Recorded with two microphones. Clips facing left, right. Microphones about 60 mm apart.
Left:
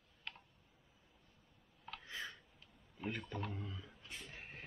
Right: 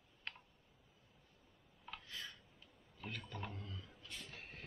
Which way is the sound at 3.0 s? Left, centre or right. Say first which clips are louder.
Left 5 dB; centre.